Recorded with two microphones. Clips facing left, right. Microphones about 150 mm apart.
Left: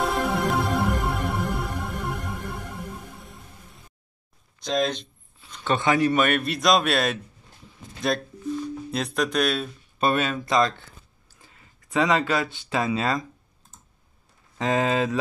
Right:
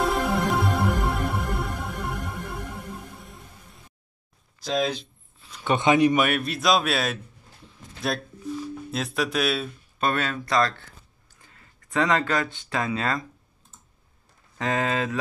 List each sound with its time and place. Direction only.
0.0 s music: centre (ahead or behind)
4.6 s a sound: 5° right (ahead or behind)
5.7 s a man's voice: 20° right (ahead or behind); by 7.2 s centre (ahead or behind)
7.6 s a sound: 5° right (ahead or behind)
8.9 s speech: 5° right (ahead or behind)
10.1 s speech: 20° left (ahead or behind)
11.4 s a sound: 15° left (ahead or behind)
12.6 s speech: 20° left (ahead or behind)
14.6 s speech: 20° left (ahead or behind)